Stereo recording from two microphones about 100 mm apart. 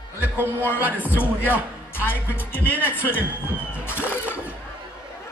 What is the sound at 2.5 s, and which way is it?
Speech, 20° left (ahead or behind).